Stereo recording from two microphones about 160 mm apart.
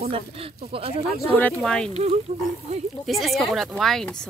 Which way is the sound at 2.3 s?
40° right (ahead or behind).